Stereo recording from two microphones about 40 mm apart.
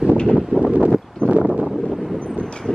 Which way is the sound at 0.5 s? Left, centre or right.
Right.